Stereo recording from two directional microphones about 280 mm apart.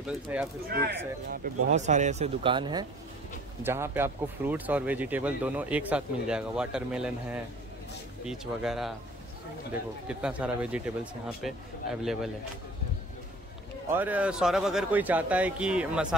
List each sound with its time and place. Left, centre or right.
0.0 s speech: centre
0.7 s speech: right; by 8.9 s centre
10.0 s speech: centre
12.0 s speech: centre
13.8 s speech: centre